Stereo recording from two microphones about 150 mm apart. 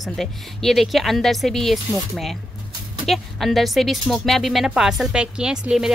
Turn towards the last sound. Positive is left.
turn(degrees=-5)  # may be behind; listen again after turning